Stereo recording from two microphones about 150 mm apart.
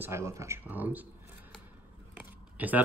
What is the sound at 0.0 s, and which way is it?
Speech, 20° right (ahead or behind).